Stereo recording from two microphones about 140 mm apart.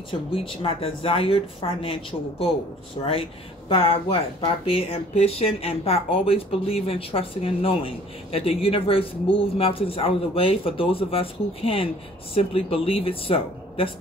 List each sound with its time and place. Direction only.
0.1 s speech: 40° left (ahead or behind)